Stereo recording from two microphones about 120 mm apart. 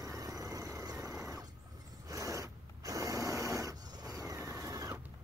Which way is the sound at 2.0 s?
25° right (ahead or behind).